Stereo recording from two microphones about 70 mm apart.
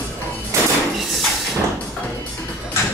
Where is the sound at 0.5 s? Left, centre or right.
Right.